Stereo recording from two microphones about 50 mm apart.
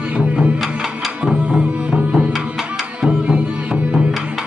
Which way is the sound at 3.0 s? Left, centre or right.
Centre.